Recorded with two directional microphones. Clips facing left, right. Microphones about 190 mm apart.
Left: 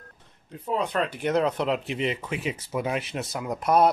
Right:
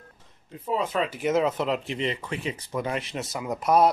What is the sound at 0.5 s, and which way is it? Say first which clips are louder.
Speech: even; centre (ahead or behind).